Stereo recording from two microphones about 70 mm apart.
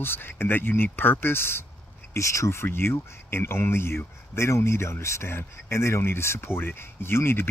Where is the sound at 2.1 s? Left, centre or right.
Left.